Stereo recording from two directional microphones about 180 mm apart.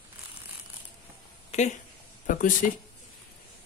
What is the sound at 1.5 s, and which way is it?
Speech, 40° left (ahead or behind).